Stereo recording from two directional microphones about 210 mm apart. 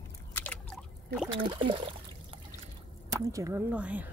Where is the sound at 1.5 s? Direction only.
25° right (ahead or behind).